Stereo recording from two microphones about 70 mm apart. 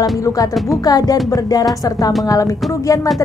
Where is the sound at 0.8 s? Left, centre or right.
Left.